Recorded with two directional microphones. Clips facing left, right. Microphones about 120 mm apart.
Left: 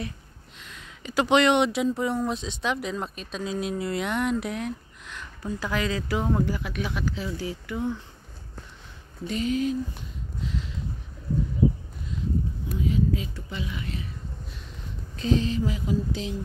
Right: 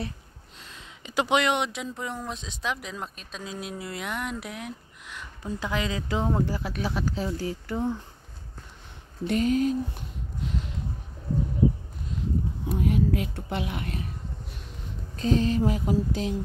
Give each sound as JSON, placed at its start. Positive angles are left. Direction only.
{"t": 0.6, "sound": "a sound", "side_deg": -30}
{"t": 1.0, "sound": "speech", "side_deg": -15}
{"t": 9.2, "sound": "mantra", "side_deg": -55}
{"t": 10.4, "sound": "a sound", "side_deg": -55}
{"t": 12.7, "sound": "speech", "side_deg": -60}
{"t": 15.1, "sound": "mantra", "side_deg": -45}